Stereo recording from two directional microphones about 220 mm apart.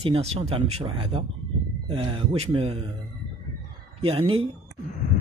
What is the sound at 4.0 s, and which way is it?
Speech, 25° right (ahead or behind).